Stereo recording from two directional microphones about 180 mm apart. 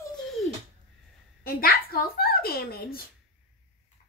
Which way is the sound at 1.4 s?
55° left (ahead or behind).